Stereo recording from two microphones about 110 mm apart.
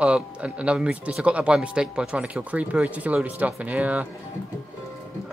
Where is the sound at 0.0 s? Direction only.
10° right (ahead or behind).